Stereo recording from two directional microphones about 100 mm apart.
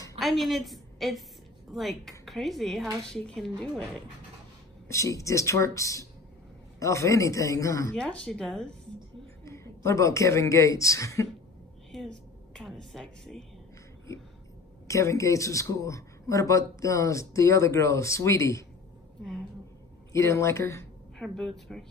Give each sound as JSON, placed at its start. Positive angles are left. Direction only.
{"t": 0.2, "sound": "a woman's voice", "side_deg": 0}
{"t": 4.8, "sound": "speech", "side_deg": 30}
{"t": 7.9, "sound": "speech", "side_deg": 5}
{"t": 9.4, "sound": "a woman's voice", "side_deg": 30}
{"t": 11.9, "sound": "a sound", "side_deg": 5}
{"t": 14.9, "sound": "speech", "side_deg": 30}
{"t": 20.1, "sound": "speech", "side_deg": 30}
{"t": 21.2, "sound": "speech", "side_deg": 5}